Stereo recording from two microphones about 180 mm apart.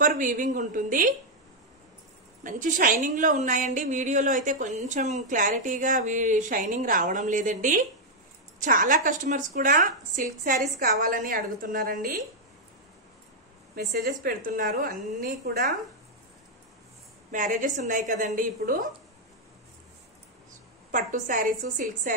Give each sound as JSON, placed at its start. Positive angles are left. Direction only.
{"t": 0.0, "sound": "a woman's voice", "side_deg": -45}
{"t": 2.4, "sound": "a woman's voice", "side_deg": -45}
{"t": 13.7, "sound": "a woman's voice", "side_deg": -55}
{"t": 17.3, "sound": "a woman's voice", "side_deg": -45}
{"t": 20.9, "sound": "a woman's voice", "side_deg": -50}